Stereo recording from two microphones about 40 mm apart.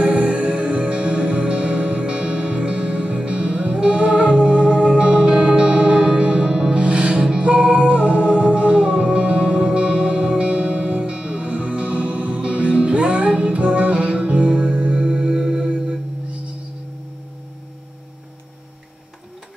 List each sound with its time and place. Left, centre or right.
0.0 s music: right
6.8 s music: right
7.5 s music: centre
8.0 s music: right
15.5 s singing bowl: centre